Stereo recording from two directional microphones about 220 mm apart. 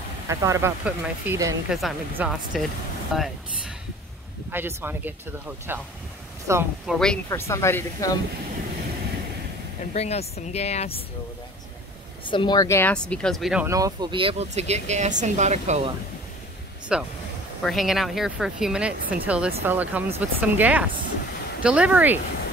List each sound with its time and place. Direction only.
0.3 s speech: 15° right (ahead or behind)
4.5 s speech: 10° right (ahead or behind)
6.9 s speech: 5° left (ahead or behind)
7.2 s speech: 15° left (ahead or behind)
9.9 s a woman's voice: 30° left (ahead or behind)
12.3 s speech: 20° left (ahead or behind); by 13.7 s centre (ahead or behind)
13.7 s speech: 15° right (ahead or behind); by 15.9 s 30° right (ahead or behind)
16.9 s speech: 5° right (ahead or behind)